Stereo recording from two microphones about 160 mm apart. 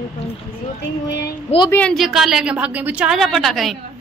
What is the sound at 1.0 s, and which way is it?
Speech, 90° left.